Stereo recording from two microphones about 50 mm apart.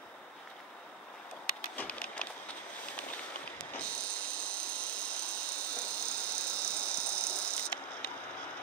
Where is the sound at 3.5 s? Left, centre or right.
Left.